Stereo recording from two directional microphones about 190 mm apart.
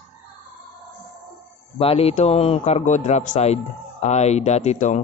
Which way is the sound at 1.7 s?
30° left (ahead or behind).